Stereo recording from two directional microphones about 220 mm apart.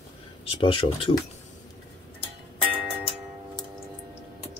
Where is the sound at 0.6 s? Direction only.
25° left (ahead or behind).